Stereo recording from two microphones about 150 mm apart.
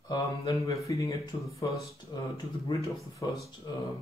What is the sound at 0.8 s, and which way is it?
Speech, 20° left (ahead or behind).